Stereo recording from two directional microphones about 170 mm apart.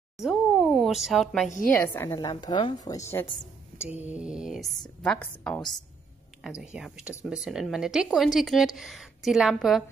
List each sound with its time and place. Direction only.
0.2 s a sound: centre (ahead or behind)
1.7 s a woman's voice: 10° left (ahead or behind)
2.1 s a woman's voice: 25° left (ahead or behind)
3.8 s speech: 10° right (ahead or behind); by 5.6 s 5° left (ahead or behind)
6.6 s speech: 5° right (ahead or behind)